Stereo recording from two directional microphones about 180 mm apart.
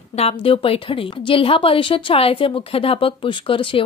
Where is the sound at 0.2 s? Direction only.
30° left (ahead or behind).